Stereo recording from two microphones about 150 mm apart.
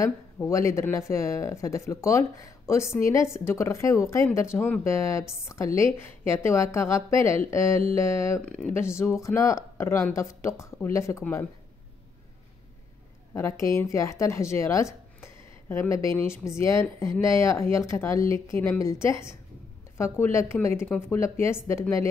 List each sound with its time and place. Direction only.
0.0 s speech: 20° left (ahead or behind)
13.3 s a woman's voice: 20° left (ahead or behind)